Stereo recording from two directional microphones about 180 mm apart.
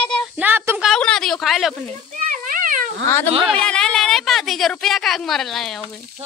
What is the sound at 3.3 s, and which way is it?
Speech, 30° right (ahead or behind).